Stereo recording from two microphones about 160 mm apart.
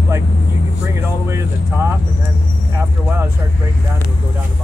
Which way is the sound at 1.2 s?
15° right (ahead or behind).